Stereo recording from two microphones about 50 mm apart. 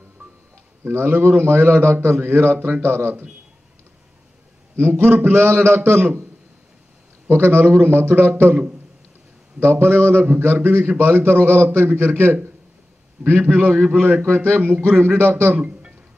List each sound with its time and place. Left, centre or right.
0.8 s a man's voice: right
4.7 s a man's voice: right
7.2 s a man's voice: right
9.6 s a man's voice: right
13.2 s a man's voice: right
14.3 s a man's voice: right